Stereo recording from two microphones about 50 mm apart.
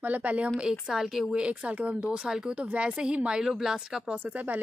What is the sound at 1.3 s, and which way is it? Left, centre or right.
Speech, right.